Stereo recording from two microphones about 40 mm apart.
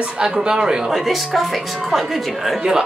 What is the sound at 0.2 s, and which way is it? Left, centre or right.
Speech, centre.